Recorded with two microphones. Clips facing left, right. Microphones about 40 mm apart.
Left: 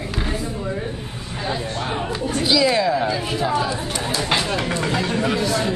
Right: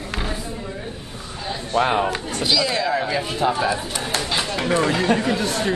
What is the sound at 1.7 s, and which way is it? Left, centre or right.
Speech, right.